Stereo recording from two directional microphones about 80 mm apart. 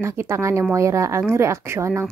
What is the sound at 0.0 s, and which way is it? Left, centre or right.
A woman's voice, right.